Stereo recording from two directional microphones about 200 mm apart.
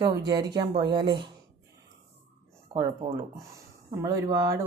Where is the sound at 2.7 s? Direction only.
15° right (ahead or behind).